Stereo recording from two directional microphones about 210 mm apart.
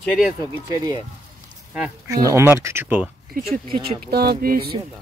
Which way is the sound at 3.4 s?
45° right (ahead or behind).